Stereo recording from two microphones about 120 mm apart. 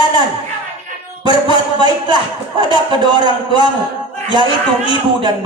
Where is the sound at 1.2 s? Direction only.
40° right (ahead or behind).